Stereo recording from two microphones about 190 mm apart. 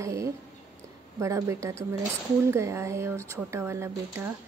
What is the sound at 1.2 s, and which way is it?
Speech, 15° right (ahead or behind).